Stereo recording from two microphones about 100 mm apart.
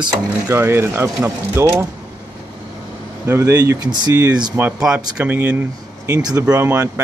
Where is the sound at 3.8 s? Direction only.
45° right (ahead or behind).